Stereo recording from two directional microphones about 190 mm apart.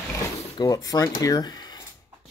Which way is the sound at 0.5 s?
20° left (ahead or behind).